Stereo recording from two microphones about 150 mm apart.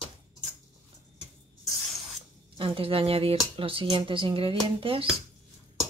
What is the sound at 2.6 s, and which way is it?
Speech, 40° right (ahead or behind).